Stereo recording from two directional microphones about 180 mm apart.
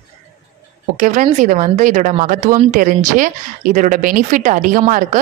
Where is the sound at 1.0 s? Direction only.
45° right (ahead or behind).